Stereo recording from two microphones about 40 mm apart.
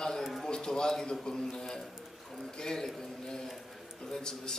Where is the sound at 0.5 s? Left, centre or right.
Centre.